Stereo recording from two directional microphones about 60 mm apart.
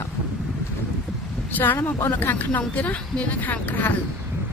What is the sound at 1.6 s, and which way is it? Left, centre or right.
Speech, left.